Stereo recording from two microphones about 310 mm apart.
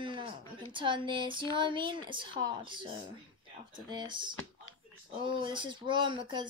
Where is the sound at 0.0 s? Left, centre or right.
Centre.